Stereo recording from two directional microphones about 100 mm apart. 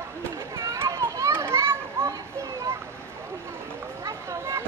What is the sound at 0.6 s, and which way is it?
Children playing, 30° right (ahead or behind).